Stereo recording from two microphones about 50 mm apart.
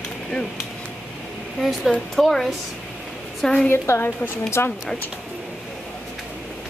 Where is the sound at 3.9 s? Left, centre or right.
Left.